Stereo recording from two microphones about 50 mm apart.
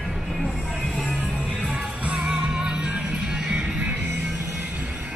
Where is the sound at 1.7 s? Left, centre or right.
Right.